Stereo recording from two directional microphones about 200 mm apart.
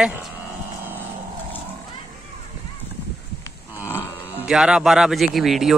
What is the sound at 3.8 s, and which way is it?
Livestock, 10° left (ahead or behind).